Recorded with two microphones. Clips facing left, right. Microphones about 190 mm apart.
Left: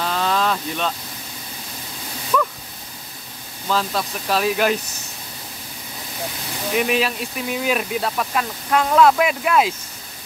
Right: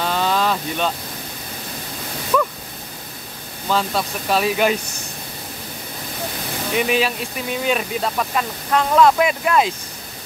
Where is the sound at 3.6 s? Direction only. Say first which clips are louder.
Right 1 dB; centre (ahead or behind).